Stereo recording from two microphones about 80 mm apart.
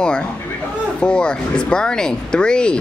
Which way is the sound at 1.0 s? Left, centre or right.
Centre.